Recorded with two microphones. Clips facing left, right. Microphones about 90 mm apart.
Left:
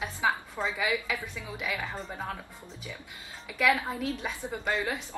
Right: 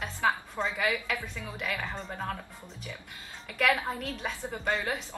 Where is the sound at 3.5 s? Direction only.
5° left (ahead or behind).